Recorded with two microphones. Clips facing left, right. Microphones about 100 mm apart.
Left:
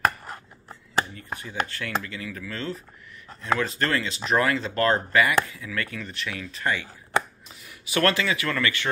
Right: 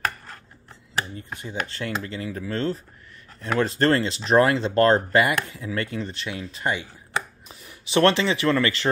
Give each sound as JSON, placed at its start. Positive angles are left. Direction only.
{"t": 1.4, "sound": "speech", "side_deg": -25}